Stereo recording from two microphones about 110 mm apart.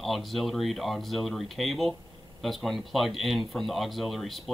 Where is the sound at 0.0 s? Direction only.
Centre (ahead or behind).